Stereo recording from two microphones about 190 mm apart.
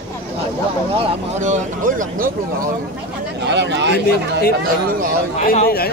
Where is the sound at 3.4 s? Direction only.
65° right (ahead or behind).